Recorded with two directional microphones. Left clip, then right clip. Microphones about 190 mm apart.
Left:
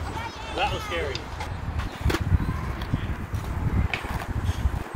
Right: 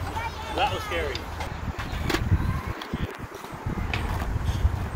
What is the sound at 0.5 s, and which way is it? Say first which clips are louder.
Run: right 1 dB; 5° left (ahead or behind).